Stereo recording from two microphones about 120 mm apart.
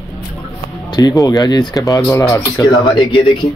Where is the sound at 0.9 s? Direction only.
30° left (ahead or behind).